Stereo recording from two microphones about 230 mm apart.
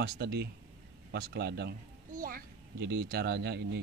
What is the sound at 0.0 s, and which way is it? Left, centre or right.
A child's voice, right.